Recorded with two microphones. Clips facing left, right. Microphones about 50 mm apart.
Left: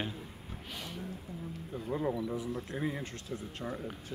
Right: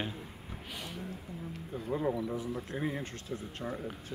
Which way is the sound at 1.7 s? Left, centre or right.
Centre.